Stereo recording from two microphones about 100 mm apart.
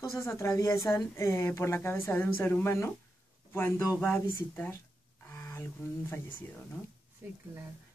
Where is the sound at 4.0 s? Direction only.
15° left (ahead or behind).